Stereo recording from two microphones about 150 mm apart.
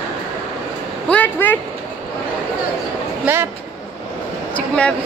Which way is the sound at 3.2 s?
15° right (ahead or behind).